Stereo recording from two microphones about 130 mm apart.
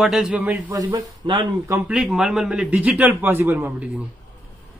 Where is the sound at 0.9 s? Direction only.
40° right (ahead or behind).